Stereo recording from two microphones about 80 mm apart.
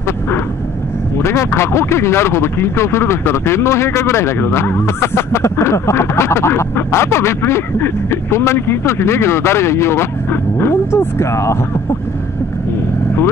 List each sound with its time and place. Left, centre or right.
1.2 s speech: left